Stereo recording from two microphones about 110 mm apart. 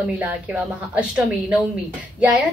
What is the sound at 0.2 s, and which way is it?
Speech, 10° right (ahead or behind).